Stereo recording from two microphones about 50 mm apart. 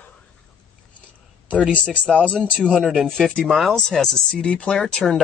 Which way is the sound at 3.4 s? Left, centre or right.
Centre.